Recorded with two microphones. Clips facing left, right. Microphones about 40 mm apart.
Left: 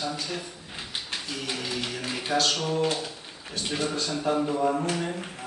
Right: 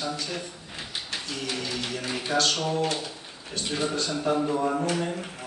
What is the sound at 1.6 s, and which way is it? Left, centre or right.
A man's voice, centre.